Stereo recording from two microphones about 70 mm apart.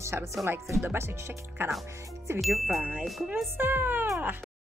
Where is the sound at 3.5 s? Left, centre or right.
Right.